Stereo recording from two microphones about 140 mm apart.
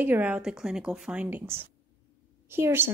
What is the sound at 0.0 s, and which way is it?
A woman's voice, 10° right (ahead or behind).